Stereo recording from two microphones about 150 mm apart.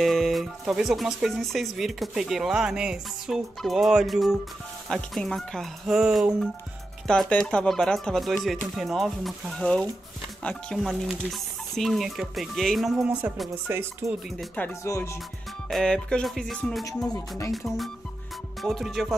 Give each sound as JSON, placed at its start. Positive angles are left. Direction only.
{"t": 0.0, "sound": "speech", "side_deg": 0}
{"t": 14.5, "sound": "speech", "side_deg": 15}
{"t": 15.7, "sound": "speech", "side_deg": 5}